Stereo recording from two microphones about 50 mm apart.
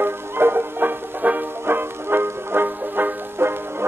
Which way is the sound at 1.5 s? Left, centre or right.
Right.